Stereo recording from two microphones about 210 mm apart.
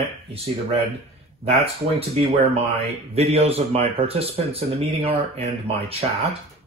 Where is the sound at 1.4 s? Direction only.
30° right (ahead or behind).